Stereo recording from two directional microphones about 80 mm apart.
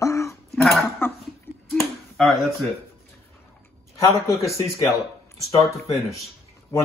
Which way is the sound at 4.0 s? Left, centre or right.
Left.